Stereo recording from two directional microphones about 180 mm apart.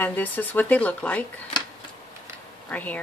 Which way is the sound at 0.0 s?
10° left (ahead or behind).